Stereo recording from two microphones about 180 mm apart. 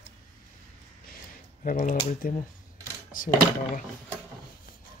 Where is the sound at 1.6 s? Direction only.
45° left (ahead or behind).